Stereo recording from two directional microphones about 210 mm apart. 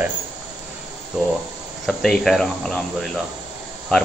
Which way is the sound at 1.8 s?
Centre (ahead or behind).